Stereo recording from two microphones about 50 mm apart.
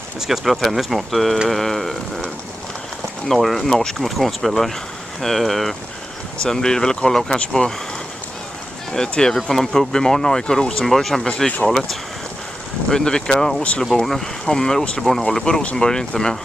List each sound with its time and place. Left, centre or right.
0.3 s speech: centre
6.4 s speech: centre
8.9 s speech: centre
9.4 s speech: centre
11.2 s speech: centre
11.6 s speech: centre